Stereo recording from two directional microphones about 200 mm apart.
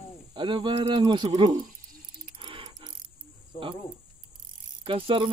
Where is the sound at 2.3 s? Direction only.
25° right (ahead or behind).